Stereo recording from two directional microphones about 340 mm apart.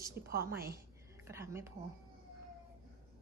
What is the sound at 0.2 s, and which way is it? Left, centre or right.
Speech, right.